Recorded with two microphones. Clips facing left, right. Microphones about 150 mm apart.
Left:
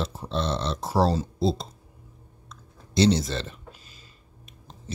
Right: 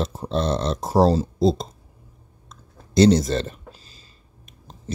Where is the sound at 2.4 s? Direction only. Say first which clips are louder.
Right 2 dB; 45° right (ahead or behind).